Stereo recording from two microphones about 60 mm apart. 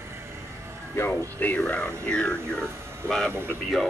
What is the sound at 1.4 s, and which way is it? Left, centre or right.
Speech, left.